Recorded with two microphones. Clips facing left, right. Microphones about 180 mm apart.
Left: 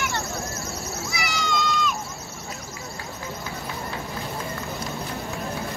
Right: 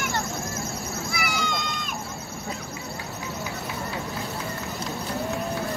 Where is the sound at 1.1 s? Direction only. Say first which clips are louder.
Left 2 dB; 55° right (ahead or behind).